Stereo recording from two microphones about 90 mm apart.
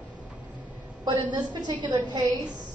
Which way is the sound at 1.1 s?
50° right (ahead or behind).